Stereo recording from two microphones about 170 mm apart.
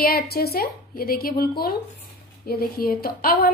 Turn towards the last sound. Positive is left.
turn(degrees=60)  # may be behind; listen again after turning